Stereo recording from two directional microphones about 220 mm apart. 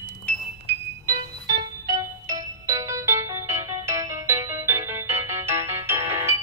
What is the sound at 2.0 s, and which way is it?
Music, 15° right (ahead or behind).